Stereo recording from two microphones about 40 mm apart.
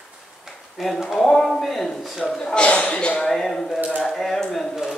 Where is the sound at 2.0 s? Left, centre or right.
Centre.